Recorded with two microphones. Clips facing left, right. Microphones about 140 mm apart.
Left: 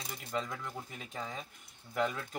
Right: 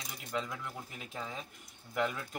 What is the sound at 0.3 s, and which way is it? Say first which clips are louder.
Speech: even; centre (ahead or behind).